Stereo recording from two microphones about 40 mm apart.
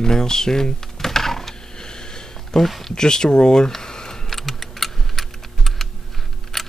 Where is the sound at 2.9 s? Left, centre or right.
Centre.